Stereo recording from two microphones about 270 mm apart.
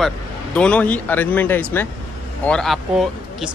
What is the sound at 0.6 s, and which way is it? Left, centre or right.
Speech, centre.